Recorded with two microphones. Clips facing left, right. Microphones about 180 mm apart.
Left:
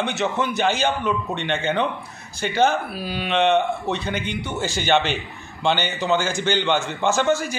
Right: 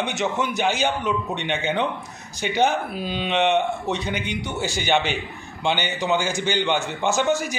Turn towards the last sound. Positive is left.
turn(degrees=-15)  # may be behind; listen again after turning